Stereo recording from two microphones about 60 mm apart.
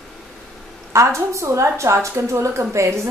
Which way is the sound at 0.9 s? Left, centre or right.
Right.